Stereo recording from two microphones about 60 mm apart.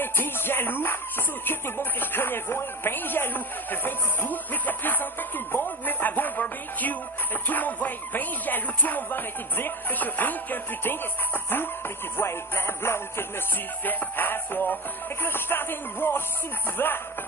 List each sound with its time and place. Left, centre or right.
0.0 s music: left
5.5 s a sound: left
7.4 s music: left